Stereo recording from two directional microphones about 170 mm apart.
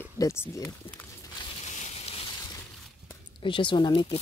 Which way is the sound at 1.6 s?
40° left (ahead or behind).